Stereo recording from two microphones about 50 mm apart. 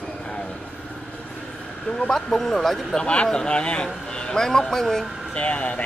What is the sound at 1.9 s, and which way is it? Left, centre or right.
A man's voice, centre.